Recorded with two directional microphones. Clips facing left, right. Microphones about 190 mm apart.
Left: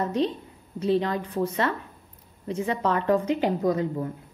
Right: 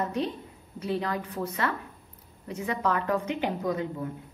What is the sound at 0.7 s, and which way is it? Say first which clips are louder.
A woman's voice: left 6 dB; 30° left (ahead or behind).